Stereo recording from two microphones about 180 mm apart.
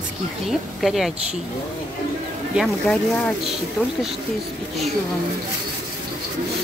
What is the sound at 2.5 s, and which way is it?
Speech, centre (ahead or behind).